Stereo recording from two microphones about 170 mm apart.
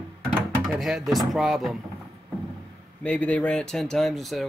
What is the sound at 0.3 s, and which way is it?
Speech, 5° right (ahead or behind).